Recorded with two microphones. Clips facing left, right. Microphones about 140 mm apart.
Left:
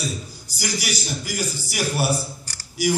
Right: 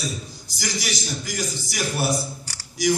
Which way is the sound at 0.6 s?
10° left (ahead or behind).